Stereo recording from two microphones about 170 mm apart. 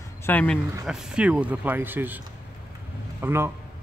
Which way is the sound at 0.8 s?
5° right (ahead or behind).